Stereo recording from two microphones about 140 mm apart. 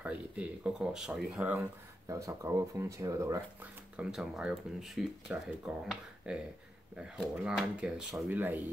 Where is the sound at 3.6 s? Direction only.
10° right (ahead or behind).